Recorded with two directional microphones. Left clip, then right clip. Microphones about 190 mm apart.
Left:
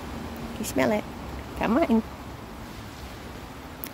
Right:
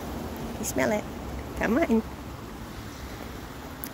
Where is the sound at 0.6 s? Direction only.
25° left (ahead or behind).